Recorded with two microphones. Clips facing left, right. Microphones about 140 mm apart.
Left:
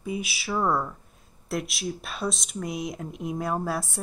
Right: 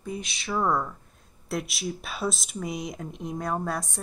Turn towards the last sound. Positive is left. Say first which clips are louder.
# left 1 dB
turn(degrees=5)  # may be behind; listen again after turning